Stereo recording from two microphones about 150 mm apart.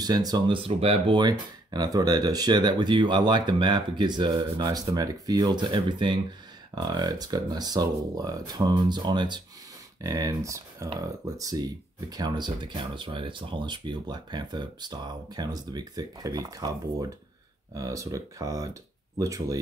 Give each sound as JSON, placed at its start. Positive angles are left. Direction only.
{"t": 0.0, "sound": "speech", "side_deg": -25}
{"t": 17.7, "sound": "speech", "side_deg": -20}